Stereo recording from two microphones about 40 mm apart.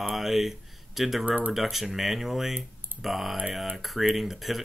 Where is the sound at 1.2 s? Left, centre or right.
Right.